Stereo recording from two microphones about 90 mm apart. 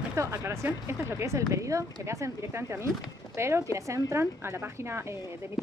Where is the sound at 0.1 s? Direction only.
35° right (ahead or behind).